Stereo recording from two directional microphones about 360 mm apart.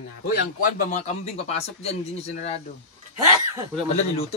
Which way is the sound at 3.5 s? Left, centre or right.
Centre.